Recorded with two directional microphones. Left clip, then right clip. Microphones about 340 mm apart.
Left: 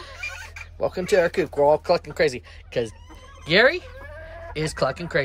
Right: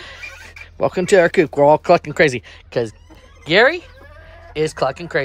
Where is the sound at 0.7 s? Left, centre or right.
Right.